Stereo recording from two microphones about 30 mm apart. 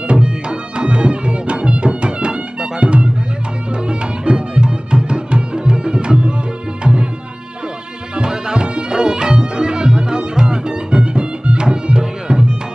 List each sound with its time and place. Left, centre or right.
0.1 s music: right
8.2 s music: right